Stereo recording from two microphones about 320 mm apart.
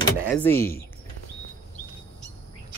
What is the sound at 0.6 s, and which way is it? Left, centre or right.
Speech, left.